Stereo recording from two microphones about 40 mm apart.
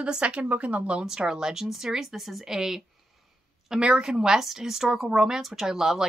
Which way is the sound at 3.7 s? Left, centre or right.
Right.